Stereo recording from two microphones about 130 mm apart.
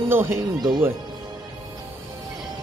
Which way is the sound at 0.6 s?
35° right (ahead or behind).